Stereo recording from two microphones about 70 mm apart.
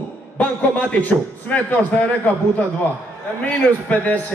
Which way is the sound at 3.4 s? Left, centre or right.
Left.